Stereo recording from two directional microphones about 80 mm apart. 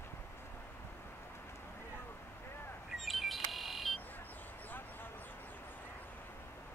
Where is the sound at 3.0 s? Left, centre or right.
Centre.